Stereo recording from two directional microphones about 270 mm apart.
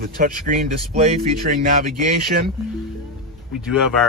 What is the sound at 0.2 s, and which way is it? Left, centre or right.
Speech, right.